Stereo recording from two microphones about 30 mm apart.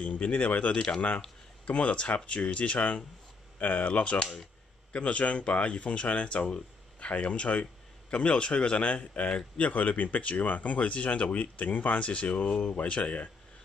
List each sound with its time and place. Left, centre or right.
0.0 s speech: left
1.7 s speech: left
11.5 s speech: left
12.0 s speech: left